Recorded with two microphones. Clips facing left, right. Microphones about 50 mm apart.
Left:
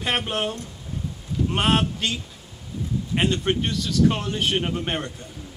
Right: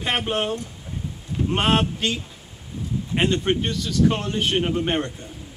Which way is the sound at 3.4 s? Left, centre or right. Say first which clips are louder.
Right 1 dB; centre.